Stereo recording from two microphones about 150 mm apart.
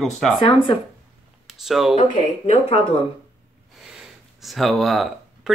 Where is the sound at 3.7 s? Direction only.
5° right (ahead or behind).